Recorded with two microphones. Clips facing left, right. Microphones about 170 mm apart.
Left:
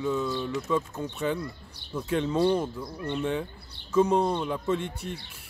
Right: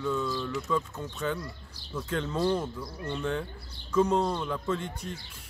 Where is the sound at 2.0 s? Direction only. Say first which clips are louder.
Left 4 dB; 10° left (ahead or behind).